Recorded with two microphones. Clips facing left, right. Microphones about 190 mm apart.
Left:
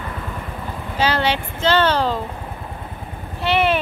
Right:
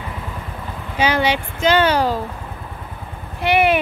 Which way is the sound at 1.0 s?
15° right (ahead or behind).